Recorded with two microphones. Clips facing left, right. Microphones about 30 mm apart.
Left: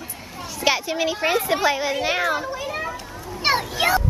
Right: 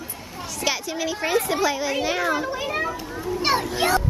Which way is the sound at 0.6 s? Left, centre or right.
Centre.